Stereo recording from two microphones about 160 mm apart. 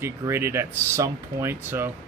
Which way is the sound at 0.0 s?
15° right (ahead or behind).